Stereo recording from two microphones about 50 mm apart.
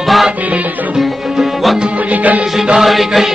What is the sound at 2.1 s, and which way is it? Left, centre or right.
Music, right.